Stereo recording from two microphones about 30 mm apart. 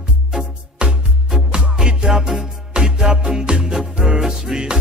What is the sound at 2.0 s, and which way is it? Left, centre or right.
Music, centre.